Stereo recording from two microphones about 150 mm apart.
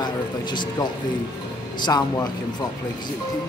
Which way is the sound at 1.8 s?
25° left (ahead or behind).